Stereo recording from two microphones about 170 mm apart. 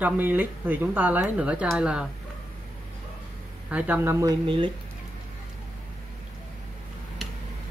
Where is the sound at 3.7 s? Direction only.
10° right (ahead or behind).